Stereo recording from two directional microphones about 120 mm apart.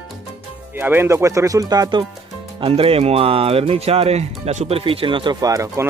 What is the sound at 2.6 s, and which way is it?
Speech, 50° right (ahead or behind).